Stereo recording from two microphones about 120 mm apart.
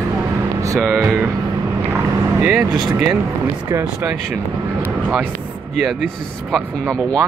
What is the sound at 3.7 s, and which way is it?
Speech, 20° right (ahead or behind).